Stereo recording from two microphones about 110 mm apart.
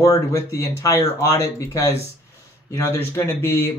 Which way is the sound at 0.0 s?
30° left (ahead or behind).